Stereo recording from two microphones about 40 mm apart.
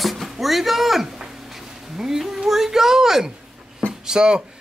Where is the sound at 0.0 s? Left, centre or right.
Centre.